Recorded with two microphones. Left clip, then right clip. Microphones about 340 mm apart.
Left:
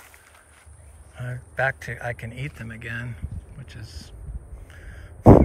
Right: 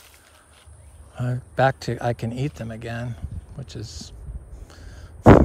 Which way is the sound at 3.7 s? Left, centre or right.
Right.